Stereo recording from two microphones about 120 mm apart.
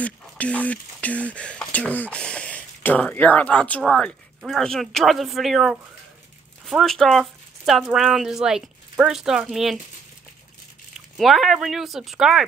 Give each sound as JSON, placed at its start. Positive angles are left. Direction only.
{"t": 0.0, "sound": "speech", "side_deg": 10}
{"t": 11.1, "sound": "speech", "side_deg": 0}